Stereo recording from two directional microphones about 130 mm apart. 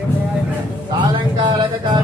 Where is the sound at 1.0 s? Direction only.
35° right (ahead or behind).